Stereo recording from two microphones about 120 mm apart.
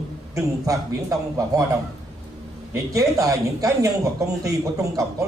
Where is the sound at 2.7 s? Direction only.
25° right (ahead or behind).